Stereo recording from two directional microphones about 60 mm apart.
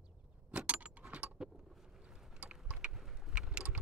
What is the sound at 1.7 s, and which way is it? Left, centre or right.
Boat, centre.